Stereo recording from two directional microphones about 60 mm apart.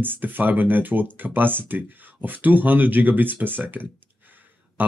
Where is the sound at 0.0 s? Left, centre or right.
Right.